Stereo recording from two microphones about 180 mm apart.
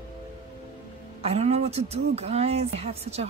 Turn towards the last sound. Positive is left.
turn(degrees=-35)  # may be behind; listen again after turning